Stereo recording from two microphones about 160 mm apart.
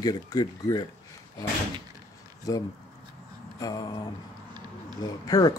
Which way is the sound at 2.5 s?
25° left (ahead or behind).